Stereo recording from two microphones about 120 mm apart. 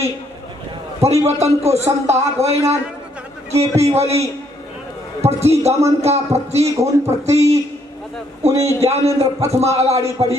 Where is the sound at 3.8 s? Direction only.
60° right (ahead or behind).